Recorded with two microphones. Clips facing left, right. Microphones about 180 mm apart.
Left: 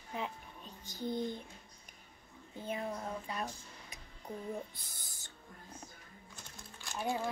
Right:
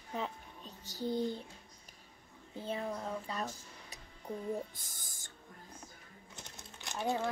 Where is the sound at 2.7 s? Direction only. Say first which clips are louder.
Right 1 dB; 30° right (ahead or behind).